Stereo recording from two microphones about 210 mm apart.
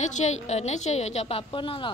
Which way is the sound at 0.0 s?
35° left (ahead or behind).